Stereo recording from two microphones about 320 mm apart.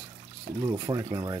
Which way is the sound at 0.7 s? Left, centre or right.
Centre.